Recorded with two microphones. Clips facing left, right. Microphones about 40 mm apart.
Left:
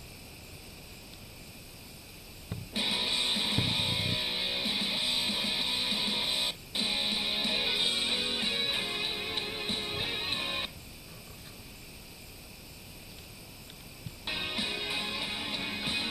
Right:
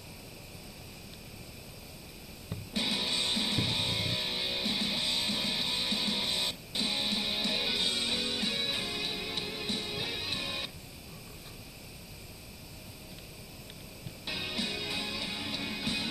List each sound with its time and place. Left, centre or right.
2.7 s music: centre
14.2 s music: left